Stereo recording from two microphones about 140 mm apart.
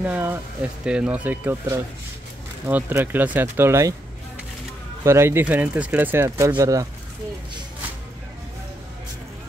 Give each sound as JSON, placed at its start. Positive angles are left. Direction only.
{"t": 0.0, "sound": "speech", "side_deg": -15}
{"t": 5.0, "sound": "speech", "side_deg": -20}